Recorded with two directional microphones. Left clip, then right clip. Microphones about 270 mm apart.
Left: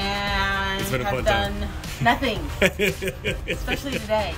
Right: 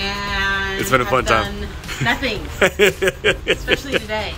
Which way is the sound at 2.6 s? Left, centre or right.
Centre.